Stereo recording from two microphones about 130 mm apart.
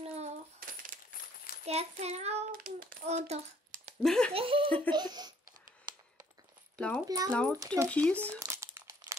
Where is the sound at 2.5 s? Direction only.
90° right; by 3.3 s 65° right (ahead or behind).